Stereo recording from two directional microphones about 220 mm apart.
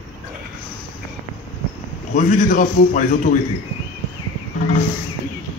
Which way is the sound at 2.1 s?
35° left (ahead or behind).